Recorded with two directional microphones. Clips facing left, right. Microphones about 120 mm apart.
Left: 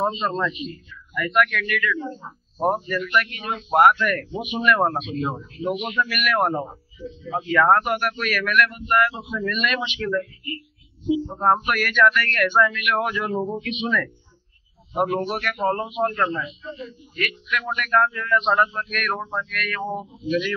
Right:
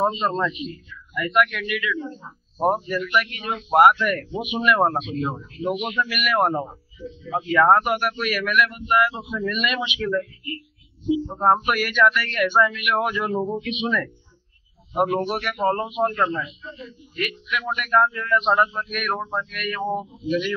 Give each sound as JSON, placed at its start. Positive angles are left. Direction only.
{"t": 0.0, "sound": "speech", "side_deg": -10}
{"t": 2.2, "sound": "speech", "side_deg": 40}
{"t": 2.6, "sound": "speech", "side_deg": -5}
{"t": 11.2, "sound": "speech", "side_deg": -10}
{"t": 15.0, "sound": "speech", "side_deg": -10}